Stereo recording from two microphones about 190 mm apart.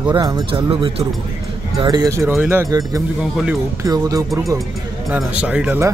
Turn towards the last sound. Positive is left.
turn(degrees=-5)  # may be behind; listen again after turning